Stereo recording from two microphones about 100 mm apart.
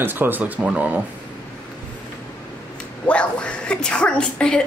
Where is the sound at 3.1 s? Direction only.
10° left (ahead or behind).